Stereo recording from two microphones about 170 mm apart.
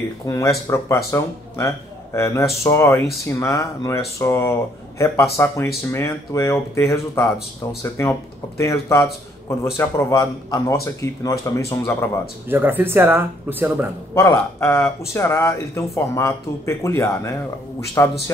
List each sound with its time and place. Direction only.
0.3 s speech: 15° left (ahead or behind)
12.4 s speech: 10° right (ahead or behind)
14.1 s speech: 15° left (ahead or behind)